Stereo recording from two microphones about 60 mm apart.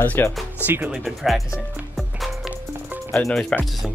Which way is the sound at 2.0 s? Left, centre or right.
Centre.